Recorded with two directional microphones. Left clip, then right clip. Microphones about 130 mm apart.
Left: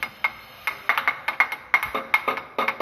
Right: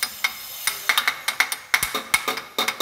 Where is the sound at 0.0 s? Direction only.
35° right (ahead or behind).